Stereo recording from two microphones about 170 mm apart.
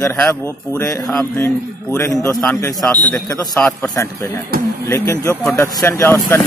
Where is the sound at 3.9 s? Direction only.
15° left (ahead or behind).